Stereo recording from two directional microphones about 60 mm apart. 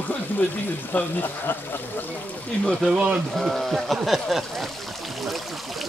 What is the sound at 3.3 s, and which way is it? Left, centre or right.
Speech, centre.